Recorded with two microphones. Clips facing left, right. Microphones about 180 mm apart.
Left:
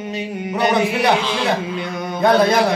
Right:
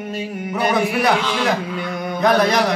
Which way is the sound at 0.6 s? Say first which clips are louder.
Left 1 dB; 20° left (ahead or behind).